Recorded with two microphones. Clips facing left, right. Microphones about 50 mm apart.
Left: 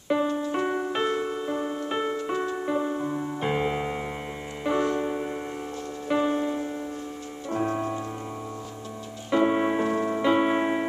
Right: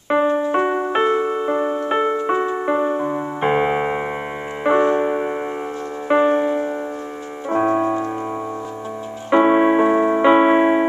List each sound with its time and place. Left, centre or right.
0.1 s music: right
2.5 s piano: right
4.6 s music: right
7.5 s piano: right
9.3 s keyboard: right